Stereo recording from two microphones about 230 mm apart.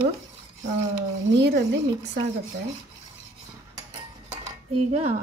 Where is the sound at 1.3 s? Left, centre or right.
Right.